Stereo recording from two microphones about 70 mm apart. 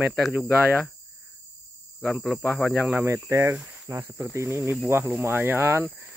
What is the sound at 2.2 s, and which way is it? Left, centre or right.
Speech, centre.